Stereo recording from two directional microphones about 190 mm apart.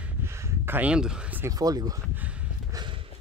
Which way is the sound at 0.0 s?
15° right (ahead or behind).